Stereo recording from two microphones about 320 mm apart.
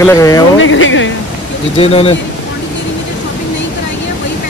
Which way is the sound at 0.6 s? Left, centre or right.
Left.